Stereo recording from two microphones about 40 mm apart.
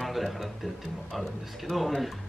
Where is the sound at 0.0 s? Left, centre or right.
Centre.